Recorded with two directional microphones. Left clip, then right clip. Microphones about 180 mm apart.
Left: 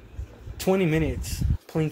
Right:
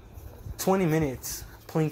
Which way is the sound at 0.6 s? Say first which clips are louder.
Left 2 dB; 5° left (ahead or behind).